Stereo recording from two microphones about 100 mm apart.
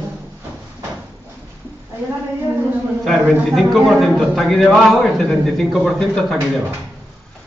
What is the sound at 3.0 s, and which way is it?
A man's voice, centre (ahead or behind).